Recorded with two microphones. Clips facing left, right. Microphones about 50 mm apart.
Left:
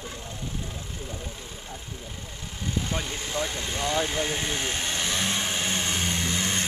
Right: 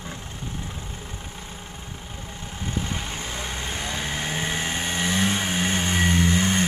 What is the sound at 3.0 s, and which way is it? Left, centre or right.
Vehicle, right.